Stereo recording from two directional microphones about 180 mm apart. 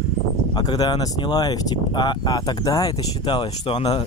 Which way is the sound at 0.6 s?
25° left (ahead or behind).